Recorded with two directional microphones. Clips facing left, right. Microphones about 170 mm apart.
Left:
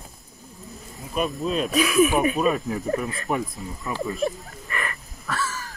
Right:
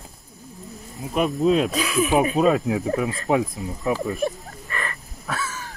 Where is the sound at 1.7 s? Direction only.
35° right (ahead or behind).